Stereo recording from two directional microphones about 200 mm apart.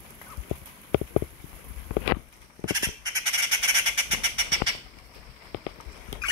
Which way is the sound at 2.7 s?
20° right (ahead or behind).